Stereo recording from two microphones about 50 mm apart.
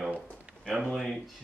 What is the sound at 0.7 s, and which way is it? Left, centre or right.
Speech, centre.